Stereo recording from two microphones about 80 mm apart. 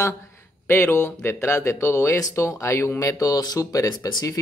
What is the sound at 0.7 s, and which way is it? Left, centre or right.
Speech, left.